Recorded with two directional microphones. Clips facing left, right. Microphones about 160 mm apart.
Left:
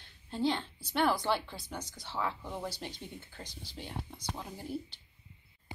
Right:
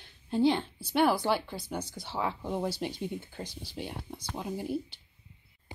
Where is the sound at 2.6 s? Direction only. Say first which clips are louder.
Right 8 dB; 10° right (ahead or behind).